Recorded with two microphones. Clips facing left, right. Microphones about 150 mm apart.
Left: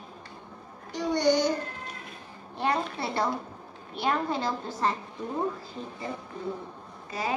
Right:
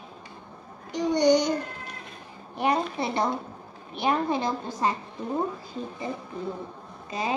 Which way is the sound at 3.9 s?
15° right (ahead or behind).